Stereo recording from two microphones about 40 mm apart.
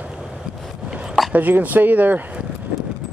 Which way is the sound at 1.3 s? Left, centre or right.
Right.